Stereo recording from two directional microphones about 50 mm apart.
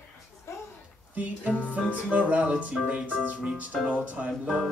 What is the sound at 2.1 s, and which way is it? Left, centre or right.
Speech, right.